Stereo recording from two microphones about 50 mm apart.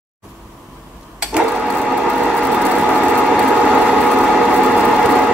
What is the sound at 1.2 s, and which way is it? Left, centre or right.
Sewing machine, right.